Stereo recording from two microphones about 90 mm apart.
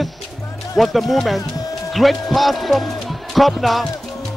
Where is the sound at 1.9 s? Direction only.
Centre (ahead or behind).